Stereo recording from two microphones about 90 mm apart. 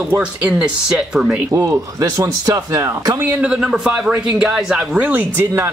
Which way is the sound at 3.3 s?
15° right (ahead or behind).